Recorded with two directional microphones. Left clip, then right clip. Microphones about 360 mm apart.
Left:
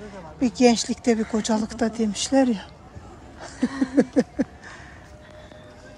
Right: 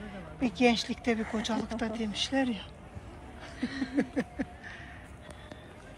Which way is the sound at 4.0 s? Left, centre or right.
Centre.